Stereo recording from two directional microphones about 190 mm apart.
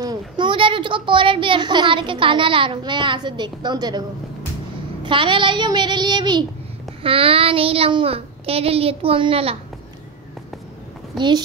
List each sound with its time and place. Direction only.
0.0 s speech: 20° right (ahead or behind)
5.0 s speech: 25° right (ahead or behind)
11.1 s speech: 25° right (ahead or behind)